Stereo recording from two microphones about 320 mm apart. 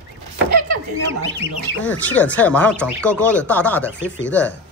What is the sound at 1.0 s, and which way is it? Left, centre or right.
Speech, right.